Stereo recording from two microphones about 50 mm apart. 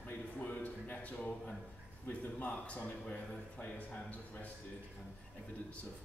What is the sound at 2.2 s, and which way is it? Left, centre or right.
A man's voice, left.